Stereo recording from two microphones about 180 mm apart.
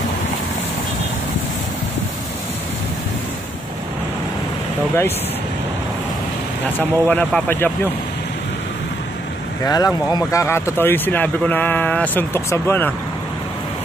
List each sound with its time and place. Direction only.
6.6 s speech: 10° left (ahead or behind)
9.7 s speech: 20° left (ahead or behind)